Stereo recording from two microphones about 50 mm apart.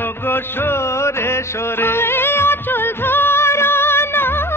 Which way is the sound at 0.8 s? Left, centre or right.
Left.